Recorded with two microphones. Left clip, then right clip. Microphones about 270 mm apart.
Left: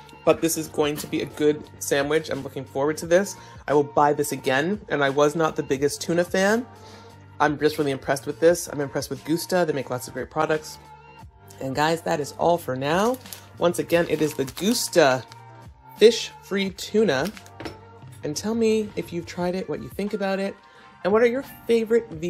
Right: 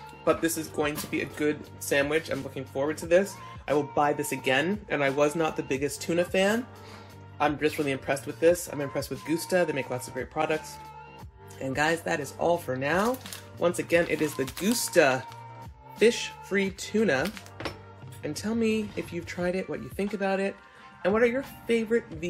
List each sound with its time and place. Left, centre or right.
0.2 s speech: left
11.6 s speech: centre